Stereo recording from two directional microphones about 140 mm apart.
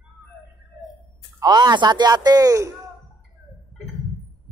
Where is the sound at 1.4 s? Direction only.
30° right (ahead or behind).